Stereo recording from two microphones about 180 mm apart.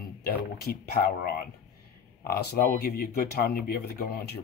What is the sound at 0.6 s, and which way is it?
Speech, 60° left (ahead or behind).